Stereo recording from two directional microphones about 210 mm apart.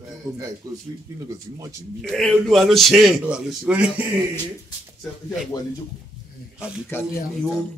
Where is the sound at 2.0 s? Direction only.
Centre (ahead or behind).